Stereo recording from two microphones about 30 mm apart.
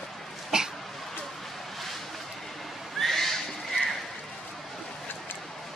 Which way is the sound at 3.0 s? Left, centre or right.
Centre.